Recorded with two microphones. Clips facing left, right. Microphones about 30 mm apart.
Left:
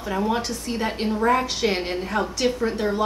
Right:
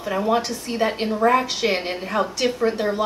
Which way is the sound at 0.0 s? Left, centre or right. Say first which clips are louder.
Right 3 dB; centre.